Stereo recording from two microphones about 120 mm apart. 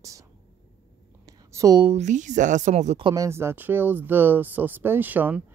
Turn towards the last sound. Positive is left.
turn(degrees=-15)  # may be behind; listen again after turning